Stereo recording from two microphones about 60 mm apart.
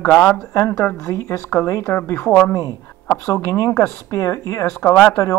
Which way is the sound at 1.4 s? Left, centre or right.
Left.